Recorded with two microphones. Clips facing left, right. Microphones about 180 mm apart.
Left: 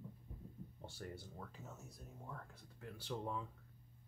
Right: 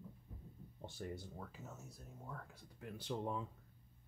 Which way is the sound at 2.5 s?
15° right (ahead or behind).